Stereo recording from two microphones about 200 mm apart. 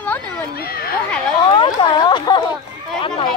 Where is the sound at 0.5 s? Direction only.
50° left (ahead or behind).